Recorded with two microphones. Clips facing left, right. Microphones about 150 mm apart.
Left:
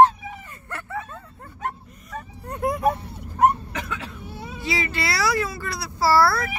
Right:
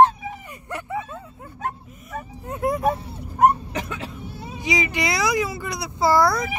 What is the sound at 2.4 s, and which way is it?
Speech, centre (ahead or behind).